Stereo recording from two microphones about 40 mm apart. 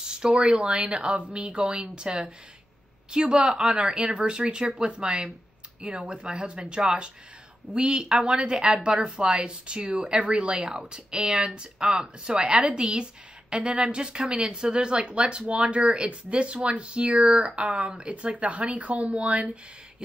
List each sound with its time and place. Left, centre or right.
0.0 s speech: centre